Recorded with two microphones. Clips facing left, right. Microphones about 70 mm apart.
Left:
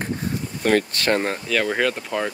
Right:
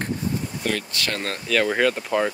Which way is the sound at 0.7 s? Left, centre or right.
Left.